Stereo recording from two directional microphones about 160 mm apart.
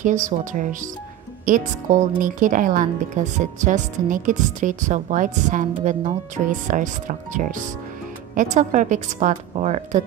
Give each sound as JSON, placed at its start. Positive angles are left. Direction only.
{"t": 0.0, "sound": "speech", "side_deg": -50}